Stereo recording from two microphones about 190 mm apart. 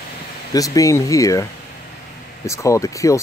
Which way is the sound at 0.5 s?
20° left (ahead or behind).